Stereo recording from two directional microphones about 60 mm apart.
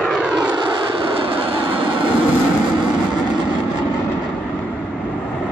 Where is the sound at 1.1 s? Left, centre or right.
Right.